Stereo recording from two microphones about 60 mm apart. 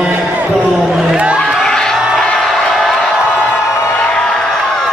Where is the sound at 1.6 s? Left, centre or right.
Centre.